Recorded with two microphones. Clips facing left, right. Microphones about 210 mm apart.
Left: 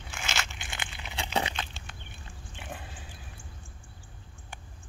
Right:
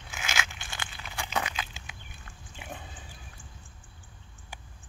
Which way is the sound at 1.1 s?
30° left (ahead or behind).